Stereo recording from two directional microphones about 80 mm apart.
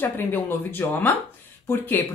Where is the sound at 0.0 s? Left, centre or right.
Left.